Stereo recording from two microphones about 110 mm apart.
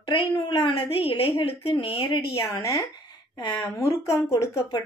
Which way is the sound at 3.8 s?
30° left (ahead or behind).